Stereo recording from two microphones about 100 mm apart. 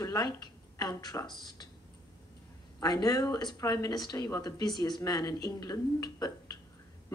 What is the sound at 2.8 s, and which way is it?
Speech, 40° left (ahead or behind).